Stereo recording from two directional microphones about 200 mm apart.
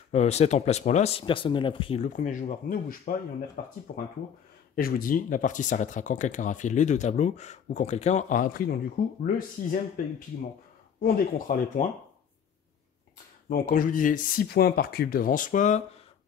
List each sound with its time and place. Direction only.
0.1 s speech: 35° left (ahead or behind)
2.0 s speech: 40° left (ahead or behind)
4.7 s speech: 45° left (ahead or behind)
13.5 s speech: 45° left (ahead or behind)